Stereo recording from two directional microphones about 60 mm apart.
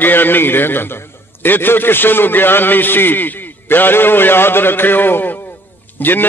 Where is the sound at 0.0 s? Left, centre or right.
Left.